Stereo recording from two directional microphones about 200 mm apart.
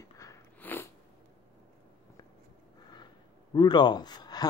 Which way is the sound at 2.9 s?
20° left (ahead or behind).